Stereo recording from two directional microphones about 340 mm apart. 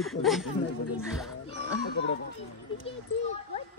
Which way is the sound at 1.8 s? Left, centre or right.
Left.